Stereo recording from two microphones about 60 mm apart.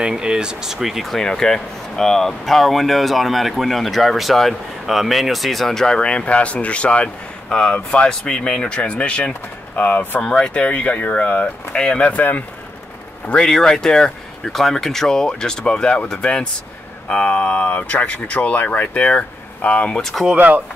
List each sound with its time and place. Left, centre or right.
0.0 s speech: centre; by 10.2 s left
10.2 s speech: centre
12.0 s speech: left
13.3 s speech: centre
20.0 s speech: centre
20.3 s speech: right